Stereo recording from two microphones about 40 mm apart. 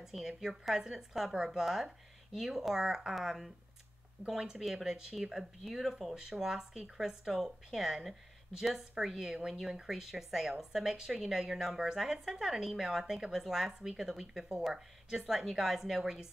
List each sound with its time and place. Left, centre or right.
0.0 s a woman's voice: centre
4.4 s speech: centre
6.3 s speech: centre